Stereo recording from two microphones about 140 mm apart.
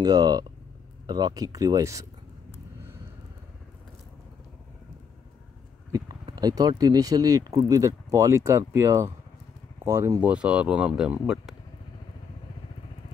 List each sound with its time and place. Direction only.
0.0 s speech: 30° right (ahead or behind)
5.9 s a sound: 25° right (ahead or behind)
6.3 s speech: 30° right (ahead or behind)
10.2 s speech: 10° right (ahead or behind)